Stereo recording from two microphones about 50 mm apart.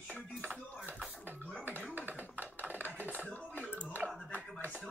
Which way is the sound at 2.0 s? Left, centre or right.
Right.